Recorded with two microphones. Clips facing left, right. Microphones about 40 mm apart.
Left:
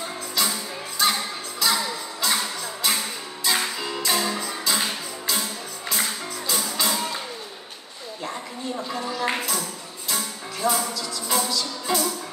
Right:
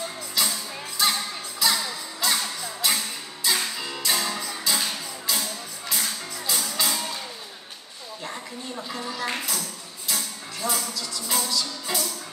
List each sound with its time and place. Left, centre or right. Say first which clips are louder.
0.4 s music: left 1 dB; centre
8.7 s a sound: left 3 dB; centre
9.2 s music: left 4 dB; centre
9.5 s music: left 3 dB; centre